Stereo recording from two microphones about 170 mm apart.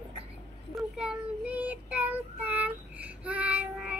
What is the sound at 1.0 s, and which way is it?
Child singing, 5° right (ahead or behind).